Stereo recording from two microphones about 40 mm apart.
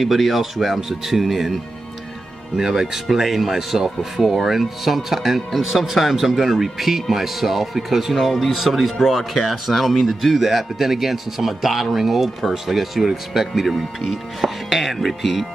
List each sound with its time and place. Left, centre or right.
0.0 s speech: centre